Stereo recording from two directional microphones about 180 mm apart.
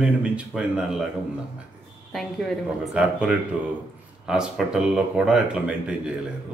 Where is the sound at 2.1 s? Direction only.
Centre (ahead or behind).